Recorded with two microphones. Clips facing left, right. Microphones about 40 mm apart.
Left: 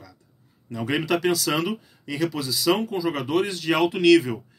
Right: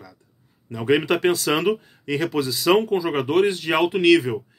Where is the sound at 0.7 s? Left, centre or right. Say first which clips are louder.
Right 4 dB; centre.